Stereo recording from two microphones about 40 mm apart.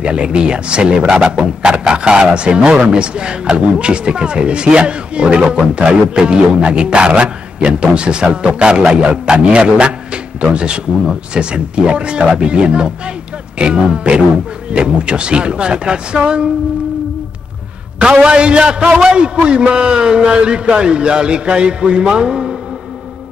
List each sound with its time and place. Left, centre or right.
0.0 s a man's voice: right
17.9 s a man's voice: right